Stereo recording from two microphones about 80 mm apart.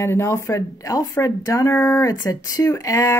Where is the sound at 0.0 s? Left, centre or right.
Left.